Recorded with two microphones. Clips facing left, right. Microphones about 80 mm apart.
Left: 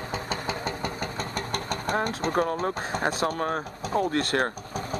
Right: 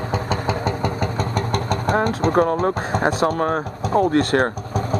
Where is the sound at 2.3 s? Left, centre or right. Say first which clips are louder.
Right 7 dB; right.